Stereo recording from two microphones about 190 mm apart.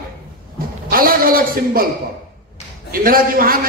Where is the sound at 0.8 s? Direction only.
50° right (ahead or behind).